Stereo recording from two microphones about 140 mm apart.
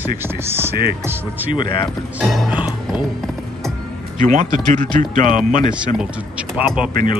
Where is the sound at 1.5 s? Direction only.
35° left (ahead or behind).